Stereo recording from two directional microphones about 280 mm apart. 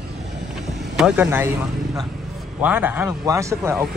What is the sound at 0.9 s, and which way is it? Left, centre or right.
Speech, centre.